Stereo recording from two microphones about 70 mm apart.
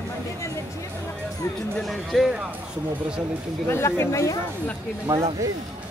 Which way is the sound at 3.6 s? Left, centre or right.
Left.